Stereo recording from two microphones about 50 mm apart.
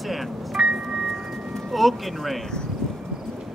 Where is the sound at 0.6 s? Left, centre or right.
Centre.